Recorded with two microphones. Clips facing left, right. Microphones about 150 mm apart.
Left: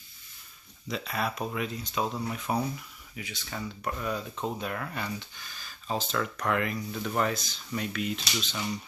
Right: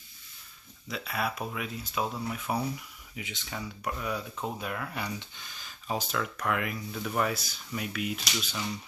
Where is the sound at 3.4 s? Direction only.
5° right (ahead or behind).